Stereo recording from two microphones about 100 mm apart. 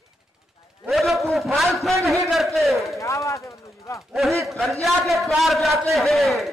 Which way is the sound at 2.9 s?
30° left (ahead or behind).